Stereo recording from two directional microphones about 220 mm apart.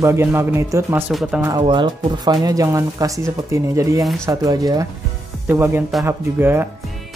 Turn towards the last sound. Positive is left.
turn(degrees=-10)  # may be behind; listen again after turning